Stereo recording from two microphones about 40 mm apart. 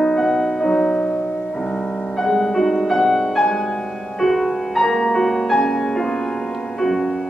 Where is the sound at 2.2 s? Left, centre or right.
Centre.